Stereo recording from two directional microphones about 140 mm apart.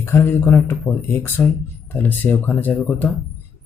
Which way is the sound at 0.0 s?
20° left (ahead or behind).